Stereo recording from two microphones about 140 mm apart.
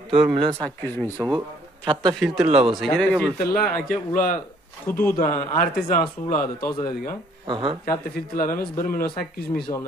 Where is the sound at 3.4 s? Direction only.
90° left; by 4.4 s 70° left (ahead or behind).